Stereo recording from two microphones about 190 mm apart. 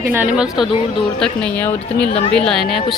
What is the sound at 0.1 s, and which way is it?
Speech, 5° right (ahead or behind).